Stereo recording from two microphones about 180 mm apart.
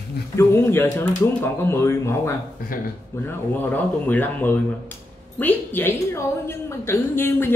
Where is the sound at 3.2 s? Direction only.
10° left (ahead or behind).